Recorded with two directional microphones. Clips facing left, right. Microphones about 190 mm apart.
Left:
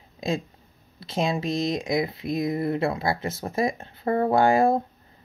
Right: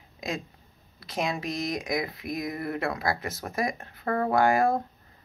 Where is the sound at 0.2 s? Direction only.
30° left (ahead or behind).